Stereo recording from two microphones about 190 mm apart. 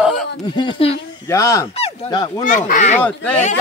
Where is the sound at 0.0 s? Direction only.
Centre (ahead or behind).